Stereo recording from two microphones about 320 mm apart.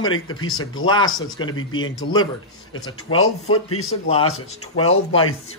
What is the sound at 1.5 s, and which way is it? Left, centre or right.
Speech, left.